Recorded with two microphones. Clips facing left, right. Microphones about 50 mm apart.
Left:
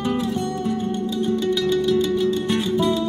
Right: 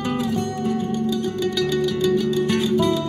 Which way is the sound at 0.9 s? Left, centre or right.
Left.